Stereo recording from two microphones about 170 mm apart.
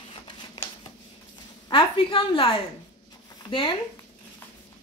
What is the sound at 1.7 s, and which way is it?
A woman's voice, 30° left (ahead or behind).